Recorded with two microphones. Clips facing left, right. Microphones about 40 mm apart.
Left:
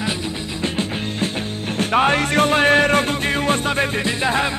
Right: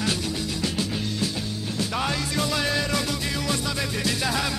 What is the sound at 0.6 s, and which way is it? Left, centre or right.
Music, left.